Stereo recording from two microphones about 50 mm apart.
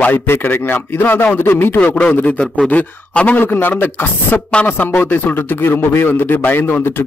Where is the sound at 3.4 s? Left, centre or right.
Left.